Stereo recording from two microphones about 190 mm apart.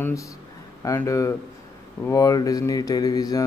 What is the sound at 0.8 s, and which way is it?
Speech, 15° left (ahead or behind).